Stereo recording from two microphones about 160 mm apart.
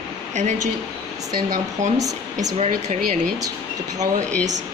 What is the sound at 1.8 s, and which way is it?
Speech, 50° right (ahead or behind).